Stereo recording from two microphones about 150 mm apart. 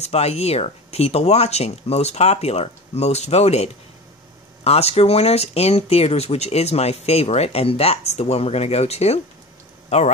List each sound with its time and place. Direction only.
0.0 s a man's voice: 45° left (ahead or behind)